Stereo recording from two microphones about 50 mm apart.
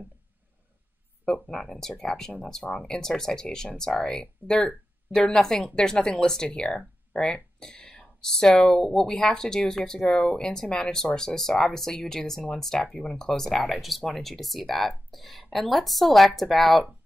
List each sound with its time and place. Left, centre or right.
1.2 s speech: centre